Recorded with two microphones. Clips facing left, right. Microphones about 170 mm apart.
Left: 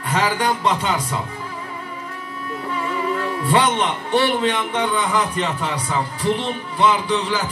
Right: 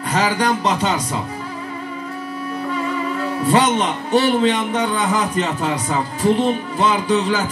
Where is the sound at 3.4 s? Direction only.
40° right (ahead or behind).